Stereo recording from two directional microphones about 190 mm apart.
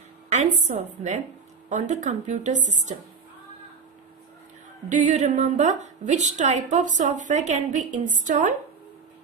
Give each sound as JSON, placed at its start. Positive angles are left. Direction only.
{"t": 0.3, "sound": "a woman's voice", "side_deg": -40}
{"t": 4.8, "sound": "a woman's voice", "side_deg": -40}